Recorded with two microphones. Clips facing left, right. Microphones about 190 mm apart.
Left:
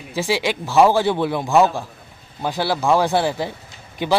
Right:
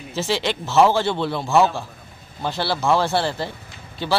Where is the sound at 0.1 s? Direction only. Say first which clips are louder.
Left 2 dB; 10° left (ahead or behind).